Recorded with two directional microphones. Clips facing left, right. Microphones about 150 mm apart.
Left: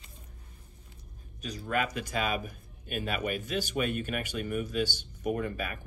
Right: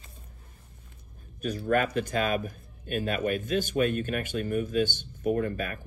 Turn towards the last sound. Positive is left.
turn(degrees=-45)  # may be behind; listen again after turning